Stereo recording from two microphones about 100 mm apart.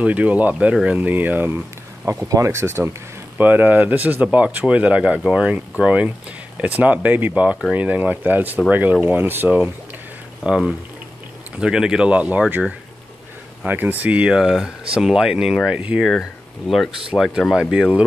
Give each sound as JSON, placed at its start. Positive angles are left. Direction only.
{"t": 0.0, "sound": "speech", "side_deg": -15}
{"t": 2.0, "sound": "speech", "side_deg": -30}
{"t": 10.4, "sound": "speech", "side_deg": -5}
{"t": 16.1, "sound": "speech", "side_deg": 0}